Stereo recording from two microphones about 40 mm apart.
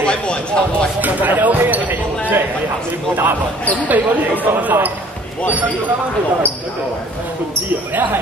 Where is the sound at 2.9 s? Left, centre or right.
Right.